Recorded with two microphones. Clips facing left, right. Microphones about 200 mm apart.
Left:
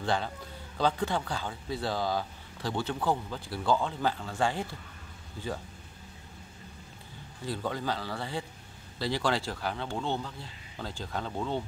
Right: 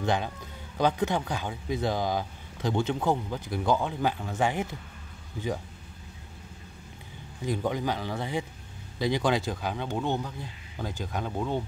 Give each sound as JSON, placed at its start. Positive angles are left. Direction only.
{"t": 0.0, "sound": "a man's voice", "side_deg": -20}
{"t": 7.4, "sound": "speech", "side_deg": -15}